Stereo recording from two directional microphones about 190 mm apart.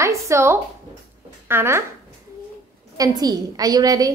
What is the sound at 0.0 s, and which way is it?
Speech, 15° right (ahead or behind).